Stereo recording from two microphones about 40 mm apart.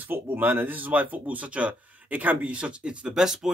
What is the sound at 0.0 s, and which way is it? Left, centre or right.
Speech, right.